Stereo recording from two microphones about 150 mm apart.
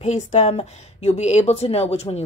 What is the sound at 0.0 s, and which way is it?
Speech, 50° left (ahead or behind).